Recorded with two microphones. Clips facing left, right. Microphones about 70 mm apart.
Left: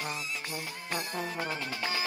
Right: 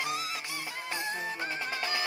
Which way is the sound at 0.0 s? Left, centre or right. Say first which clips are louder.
Right 3 dB; right.